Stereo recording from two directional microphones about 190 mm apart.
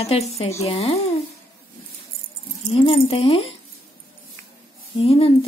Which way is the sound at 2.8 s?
30° left (ahead or behind).